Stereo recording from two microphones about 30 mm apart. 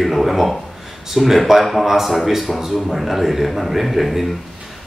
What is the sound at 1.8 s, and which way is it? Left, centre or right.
A man's voice, centre.